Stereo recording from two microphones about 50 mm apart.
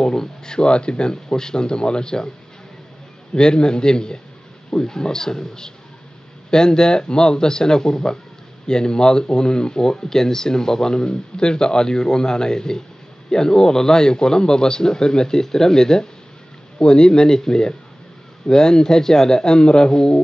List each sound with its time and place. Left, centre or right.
0.0 s speech: centre
3.3 s speech: centre